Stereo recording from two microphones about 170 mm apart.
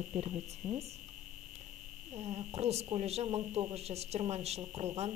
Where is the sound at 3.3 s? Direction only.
25° right (ahead or behind).